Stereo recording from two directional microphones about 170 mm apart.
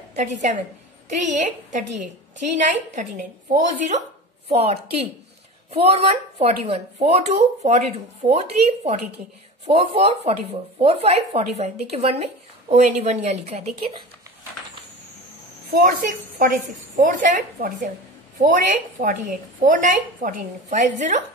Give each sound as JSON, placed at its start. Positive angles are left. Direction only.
{"t": 0.1, "sound": "a woman's voice", "side_deg": -40}
{"t": 15.7, "sound": "a woman's voice", "side_deg": -55}